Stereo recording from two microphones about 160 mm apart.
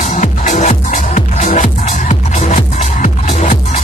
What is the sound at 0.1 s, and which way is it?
Music, 50° left (ahead or behind).